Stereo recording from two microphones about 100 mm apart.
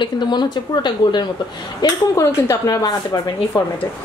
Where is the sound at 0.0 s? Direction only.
50° left (ahead or behind).